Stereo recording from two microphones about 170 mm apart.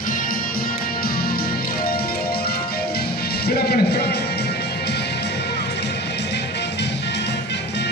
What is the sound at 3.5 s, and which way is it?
Music, 65° left (ahead or behind).